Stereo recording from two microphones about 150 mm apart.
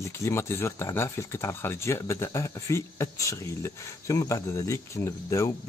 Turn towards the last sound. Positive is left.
turn(degrees=20)  # may be behind; listen again after turning